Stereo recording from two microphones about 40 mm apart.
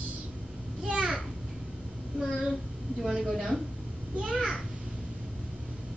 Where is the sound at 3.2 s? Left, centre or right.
Centre.